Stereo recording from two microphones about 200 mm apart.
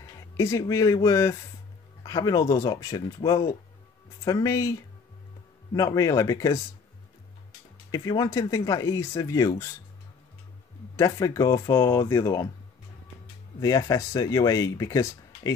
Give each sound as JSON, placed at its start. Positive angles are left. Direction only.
{"t": 0.4, "sound": "speech", "side_deg": 15}
{"t": 7.9, "sound": "speech", "side_deg": 15}
{"t": 11.0, "sound": "speech", "side_deg": 15}
{"t": 13.6, "sound": "speech", "side_deg": 15}